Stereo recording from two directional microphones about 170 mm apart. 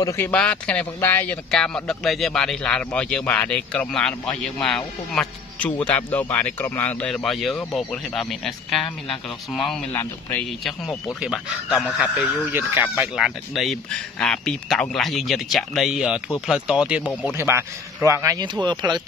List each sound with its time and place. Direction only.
0.0 s speech: 15° left (ahead or behind)
0.3 s speech: 5° left (ahead or behind)
11.1 s speech: centre (ahead or behind); by 18.9 s 25° right (ahead or behind)